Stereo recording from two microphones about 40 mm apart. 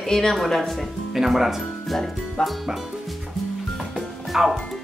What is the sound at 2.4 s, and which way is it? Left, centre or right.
Music, centre.